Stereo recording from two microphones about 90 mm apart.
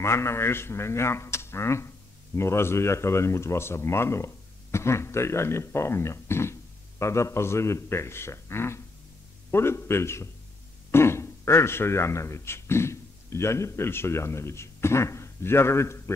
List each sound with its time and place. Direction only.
0.0 s speech: 30° left (ahead or behind)